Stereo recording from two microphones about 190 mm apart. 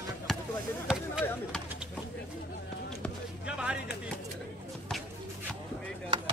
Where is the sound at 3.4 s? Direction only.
5° right (ahead or behind).